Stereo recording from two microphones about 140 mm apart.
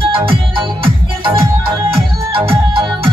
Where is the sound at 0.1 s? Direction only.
40° right (ahead or behind).